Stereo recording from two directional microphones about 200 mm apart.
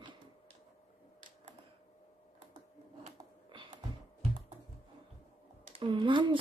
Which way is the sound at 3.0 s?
25° right (ahead or behind).